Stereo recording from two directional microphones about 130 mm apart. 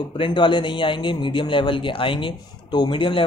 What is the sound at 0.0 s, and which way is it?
A man's voice, 40° left (ahead or behind).